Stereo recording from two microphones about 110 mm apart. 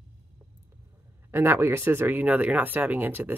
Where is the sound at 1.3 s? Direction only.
20° right (ahead or behind).